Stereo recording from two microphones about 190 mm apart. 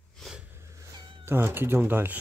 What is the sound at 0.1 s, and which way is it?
Cat, centre (ahead or behind).